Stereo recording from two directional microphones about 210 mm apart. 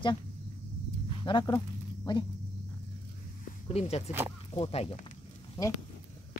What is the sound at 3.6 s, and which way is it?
Speech, 30° left (ahead or behind).